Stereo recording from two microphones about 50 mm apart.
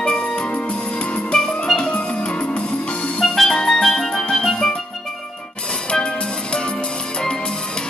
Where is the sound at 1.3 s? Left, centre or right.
Centre.